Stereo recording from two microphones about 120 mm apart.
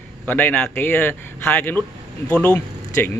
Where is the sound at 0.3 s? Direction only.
15° left (ahead or behind).